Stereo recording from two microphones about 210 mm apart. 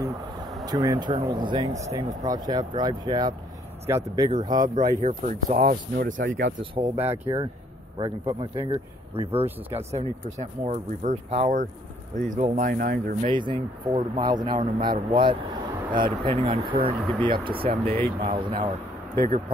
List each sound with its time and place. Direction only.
0.7 s speech: 20° right (ahead or behind)
5.0 s speech: 35° right (ahead or behind)
6.6 s speech: 25° right (ahead or behind); by 13.3 s 40° right (ahead or behind)
13.3 s speech: 20° right (ahead or behind)
19.1 s speech: 40° right (ahead or behind)